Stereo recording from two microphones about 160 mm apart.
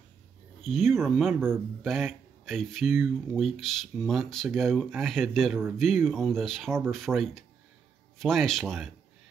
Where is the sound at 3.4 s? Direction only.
Centre (ahead or behind).